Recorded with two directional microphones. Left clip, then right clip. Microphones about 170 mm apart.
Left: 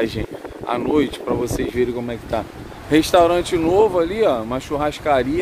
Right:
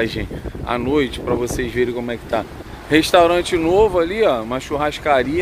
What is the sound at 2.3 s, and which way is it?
Speech, centre (ahead or behind).